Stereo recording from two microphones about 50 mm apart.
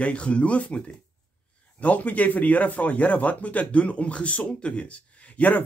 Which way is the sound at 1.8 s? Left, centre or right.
Left.